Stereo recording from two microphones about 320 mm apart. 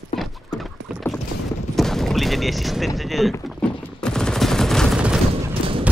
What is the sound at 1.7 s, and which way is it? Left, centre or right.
Gunshot, centre.